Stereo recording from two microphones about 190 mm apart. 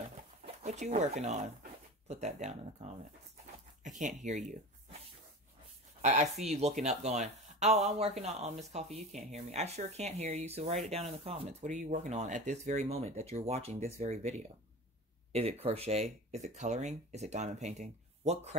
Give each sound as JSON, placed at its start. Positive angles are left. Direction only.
{"t": 0.7, "sound": "speech", "side_deg": -35}
{"t": 4.2, "sound": "speech", "side_deg": -40}
{"t": 5.9, "sound": "a sound", "side_deg": -35}
{"t": 6.3, "sound": "speech", "side_deg": -35}
{"t": 15.3, "sound": "speech", "side_deg": -35}